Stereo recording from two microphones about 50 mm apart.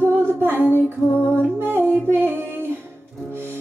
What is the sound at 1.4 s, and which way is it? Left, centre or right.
Music, right.